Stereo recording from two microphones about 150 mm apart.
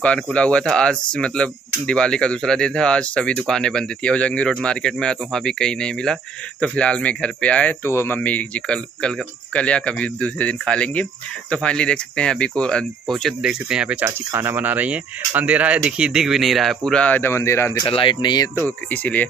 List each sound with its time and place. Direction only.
0.0 s speech: 5° left (ahead or behind)
14.0 s speech: 15° right (ahead or behind); by 17.8 s 20° left (ahead or behind)
17.8 s speech: 35° left (ahead or behind)
18.6 s speech: 10° left (ahead or behind)